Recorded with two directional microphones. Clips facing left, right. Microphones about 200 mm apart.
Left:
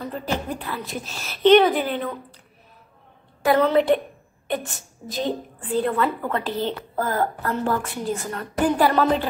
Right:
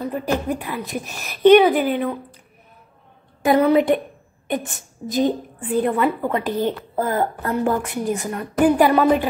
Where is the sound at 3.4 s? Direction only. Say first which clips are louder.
Right 2 dB; 15° right (ahead or behind).